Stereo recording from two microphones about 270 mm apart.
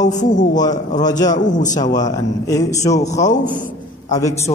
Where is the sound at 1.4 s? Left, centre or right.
Left.